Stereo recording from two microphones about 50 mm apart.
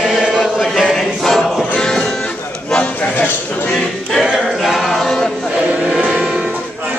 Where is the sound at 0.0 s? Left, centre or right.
Centre.